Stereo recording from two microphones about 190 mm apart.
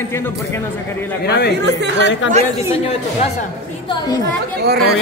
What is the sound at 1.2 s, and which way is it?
Speech, 55° left (ahead or behind).